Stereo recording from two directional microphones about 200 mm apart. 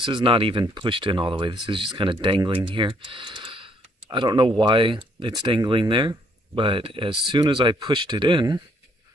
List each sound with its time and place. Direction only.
0.0 s speech: 25° right (ahead or behind)